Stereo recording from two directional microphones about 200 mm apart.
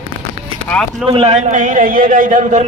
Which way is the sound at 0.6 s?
5° left (ahead or behind).